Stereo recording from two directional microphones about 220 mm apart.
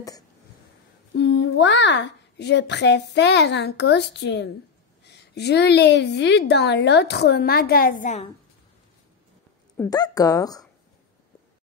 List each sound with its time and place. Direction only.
1.1 s a child's voice: 55° left (ahead or behind); by 8.3 s 35° left (ahead or behind)
9.8 s speech: 15° left (ahead or behind)